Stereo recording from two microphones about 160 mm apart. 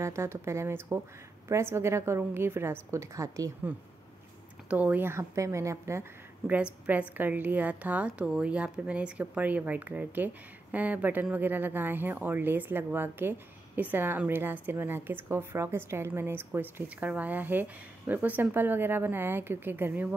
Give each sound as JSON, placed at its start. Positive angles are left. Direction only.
{"t": 0.0, "sound": "a woman's voice", "side_deg": -15}
{"t": 4.6, "sound": "a woman's voice", "side_deg": -10}